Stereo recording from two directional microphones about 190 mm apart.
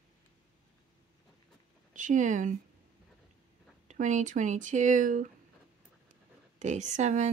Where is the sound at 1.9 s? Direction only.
40° right (ahead or behind).